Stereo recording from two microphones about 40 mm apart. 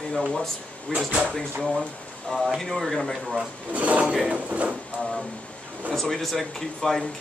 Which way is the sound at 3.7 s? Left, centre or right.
Right.